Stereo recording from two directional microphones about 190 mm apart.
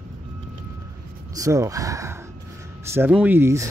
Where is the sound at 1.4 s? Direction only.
15° right (ahead or behind).